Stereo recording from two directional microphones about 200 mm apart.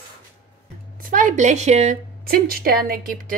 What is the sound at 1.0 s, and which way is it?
A woman's voice, 45° right (ahead or behind).